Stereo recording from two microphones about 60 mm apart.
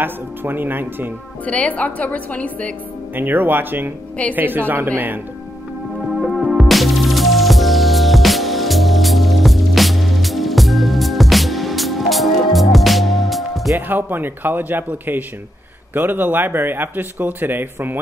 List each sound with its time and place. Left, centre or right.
0.0 s speech: right
1.4 s a woman's voice: left
3.2 s speech: right
6.7 s music: centre
13.7 s speech: right